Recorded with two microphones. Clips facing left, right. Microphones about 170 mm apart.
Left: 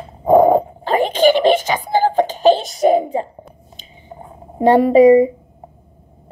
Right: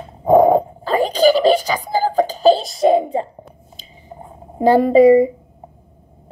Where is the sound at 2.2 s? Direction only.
35° right (ahead or behind).